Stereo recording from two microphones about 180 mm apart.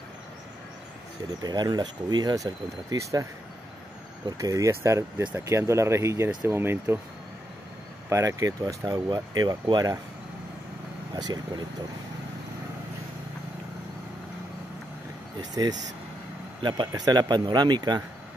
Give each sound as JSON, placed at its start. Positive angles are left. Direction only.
{"t": 1.4, "sound": "speech", "side_deg": -25}
{"t": 4.4, "sound": "speech", "side_deg": -20}
{"t": 8.1, "sound": "speech", "side_deg": -20}
{"t": 15.6, "sound": "speech", "side_deg": -20}